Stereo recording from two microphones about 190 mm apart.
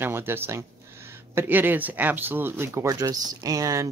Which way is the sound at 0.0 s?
10° right (ahead or behind).